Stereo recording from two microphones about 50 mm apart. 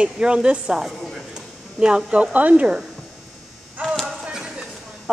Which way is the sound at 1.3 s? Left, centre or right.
Centre.